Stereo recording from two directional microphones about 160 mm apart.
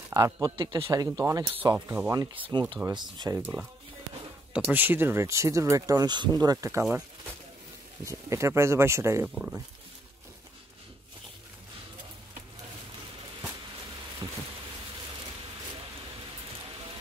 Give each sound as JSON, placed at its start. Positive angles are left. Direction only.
{"t": 0.1, "sound": "speech", "side_deg": -20}
{"t": 2.3, "sound": "speech", "side_deg": -30}
{"t": 3.3, "sound": "speech", "side_deg": -10}
{"t": 4.6, "sound": "speech", "side_deg": -10}
{"t": 8.0, "sound": "speech", "side_deg": -20}
{"t": 9.3, "sound": "speech", "side_deg": -5}